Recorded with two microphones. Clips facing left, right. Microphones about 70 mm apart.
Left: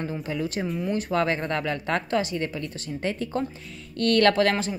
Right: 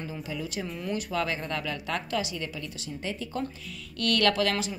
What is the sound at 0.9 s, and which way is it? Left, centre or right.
Speech, left.